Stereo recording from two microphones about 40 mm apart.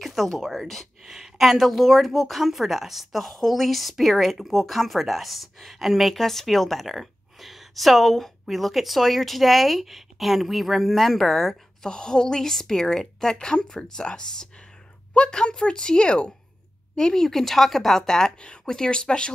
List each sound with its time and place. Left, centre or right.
0.0 s speech: centre
1.0 s a woman's voice: centre; by 19.3 s left